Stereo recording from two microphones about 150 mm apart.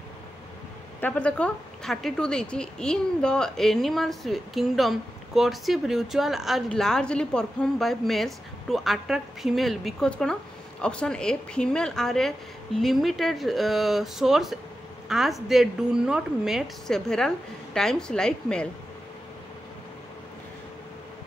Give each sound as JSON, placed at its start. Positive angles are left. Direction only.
{"t": 1.0, "sound": "a woman's voice", "side_deg": 5}